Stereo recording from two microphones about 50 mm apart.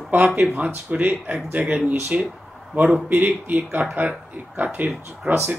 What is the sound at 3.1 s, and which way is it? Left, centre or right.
A man's voice, right.